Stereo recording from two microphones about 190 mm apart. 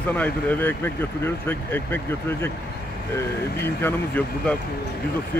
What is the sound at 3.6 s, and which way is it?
Speech, 10° left (ahead or behind).